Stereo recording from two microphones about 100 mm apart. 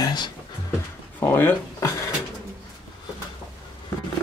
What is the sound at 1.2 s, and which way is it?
Speech, 20° left (ahead or behind).